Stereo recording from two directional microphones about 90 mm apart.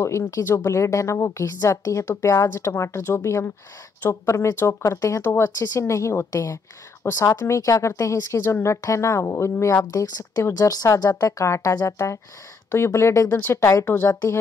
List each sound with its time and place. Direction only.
0.7 s speech: 35° left (ahead or behind)